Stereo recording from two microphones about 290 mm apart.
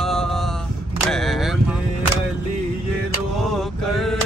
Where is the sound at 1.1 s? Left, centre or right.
Centre.